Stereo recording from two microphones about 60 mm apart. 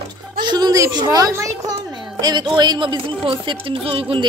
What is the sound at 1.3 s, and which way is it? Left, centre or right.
Speech, right.